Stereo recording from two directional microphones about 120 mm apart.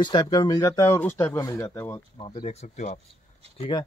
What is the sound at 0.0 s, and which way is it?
Speech, 35° left (ahead or behind).